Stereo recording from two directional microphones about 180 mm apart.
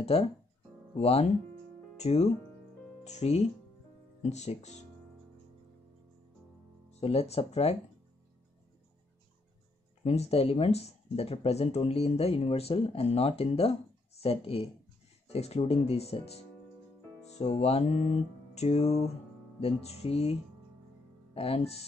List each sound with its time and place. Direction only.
0.0 s speech: 35° left (ahead or behind)
6.9 s speech: 35° left (ahead or behind)
10.0 s speech: 35° left (ahead or behind)
21.4 s speech: 35° left (ahead or behind)